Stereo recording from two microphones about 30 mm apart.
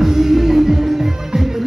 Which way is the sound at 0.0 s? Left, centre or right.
Centre.